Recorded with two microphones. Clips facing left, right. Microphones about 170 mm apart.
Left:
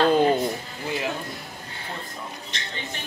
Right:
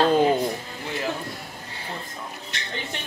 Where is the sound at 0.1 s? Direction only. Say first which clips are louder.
Even; 5° right (ahead or behind).